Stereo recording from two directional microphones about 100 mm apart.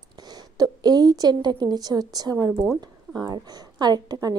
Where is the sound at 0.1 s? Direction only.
45° right (ahead or behind).